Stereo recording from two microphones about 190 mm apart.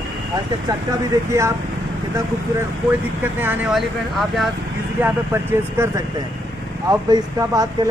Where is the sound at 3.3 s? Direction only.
10° right (ahead or behind).